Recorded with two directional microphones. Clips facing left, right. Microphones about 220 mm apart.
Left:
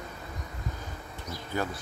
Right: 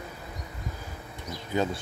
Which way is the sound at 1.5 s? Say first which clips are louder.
Right 5 dB; 20° right (ahead or behind).